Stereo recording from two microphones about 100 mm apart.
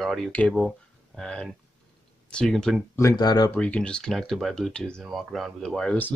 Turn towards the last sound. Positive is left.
turn(degrees=5)  # may be behind; listen again after turning